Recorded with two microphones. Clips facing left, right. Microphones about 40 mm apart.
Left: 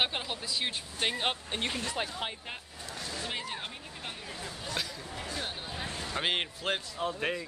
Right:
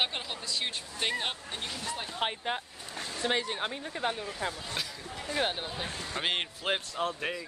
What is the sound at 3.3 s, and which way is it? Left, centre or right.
Speech, right.